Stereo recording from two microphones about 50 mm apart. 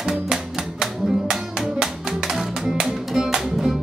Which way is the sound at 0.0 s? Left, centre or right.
Centre.